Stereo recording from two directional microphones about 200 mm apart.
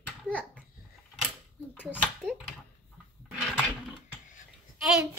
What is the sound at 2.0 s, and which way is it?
Speech, 5° right (ahead or behind).